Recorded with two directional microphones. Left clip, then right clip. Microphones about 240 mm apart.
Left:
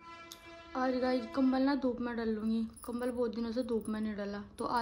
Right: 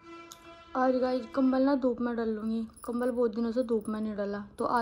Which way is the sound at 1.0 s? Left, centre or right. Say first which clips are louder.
Right 3 dB; centre.